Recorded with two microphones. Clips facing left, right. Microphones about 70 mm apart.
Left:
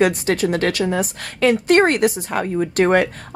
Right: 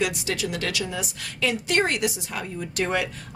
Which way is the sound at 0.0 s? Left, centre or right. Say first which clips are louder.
Left 9 dB; left.